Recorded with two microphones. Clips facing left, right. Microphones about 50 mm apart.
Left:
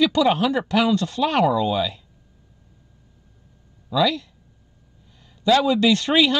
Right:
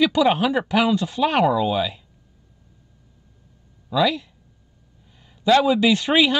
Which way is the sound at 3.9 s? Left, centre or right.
Centre.